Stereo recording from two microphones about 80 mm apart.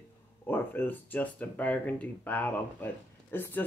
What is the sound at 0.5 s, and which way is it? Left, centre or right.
Speech, left.